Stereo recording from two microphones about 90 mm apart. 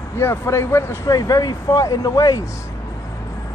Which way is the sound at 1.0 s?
40° left (ahead or behind).